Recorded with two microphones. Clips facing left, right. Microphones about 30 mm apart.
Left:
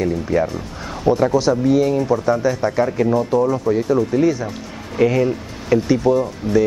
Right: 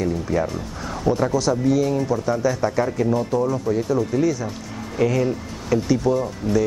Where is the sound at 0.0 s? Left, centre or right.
Centre.